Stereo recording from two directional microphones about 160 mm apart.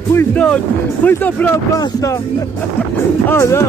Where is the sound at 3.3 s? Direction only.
15° left (ahead or behind).